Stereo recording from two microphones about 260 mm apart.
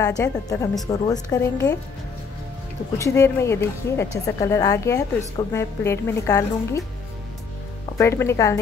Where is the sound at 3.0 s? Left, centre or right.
Centre.